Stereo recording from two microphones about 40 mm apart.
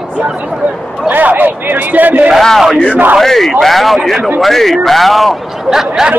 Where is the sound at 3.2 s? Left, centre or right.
Centre.